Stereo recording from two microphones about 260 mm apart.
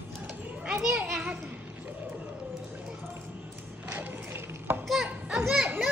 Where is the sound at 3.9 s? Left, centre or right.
Centre.